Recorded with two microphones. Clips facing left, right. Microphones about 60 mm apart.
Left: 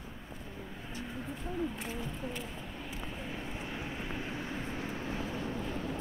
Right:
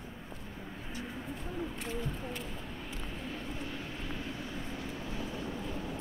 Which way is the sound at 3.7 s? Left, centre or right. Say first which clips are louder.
Left 2 dB; left.